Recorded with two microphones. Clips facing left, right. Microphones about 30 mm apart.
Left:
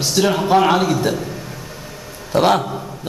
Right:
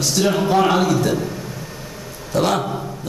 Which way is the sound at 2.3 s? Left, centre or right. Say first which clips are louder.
Left 4 dB; left.